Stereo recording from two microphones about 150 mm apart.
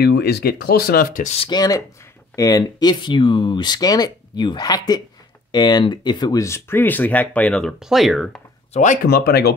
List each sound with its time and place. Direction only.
0.0 s speech: 90° left; by 1.3 s 75° left (ahead or behind)
1.5 s speech: 25° left (ahead or behind); by 8.4 s centre (ahead or behind)
8.7 s speech: 55° left (ahead or behind); by 9.5 s 90° left